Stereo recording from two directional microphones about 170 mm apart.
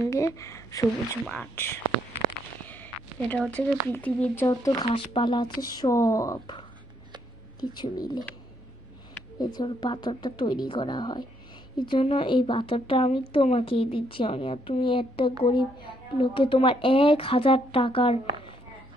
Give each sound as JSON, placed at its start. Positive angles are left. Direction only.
{"t": 0.0, "sound": "speech", "side_deg": 15}
{"t": 1.2, "sound": "speech", "side_deg": 10}
{"t": 2.6, "sound": "a sound", "side_deg": 10}
{"t": 3.9, "sound": "speech", "side_deg": 10}
{"t": 4.5, "sound": "speech", "side_deg": 20}
{"t": 7.6, "sound": "speech", "side_deg": 25}
{"t": 9.4, "sound": "speech", "side_deg": 25}